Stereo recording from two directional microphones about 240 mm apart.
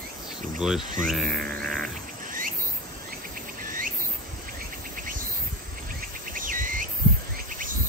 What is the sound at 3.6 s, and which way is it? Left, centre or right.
Cricket, right.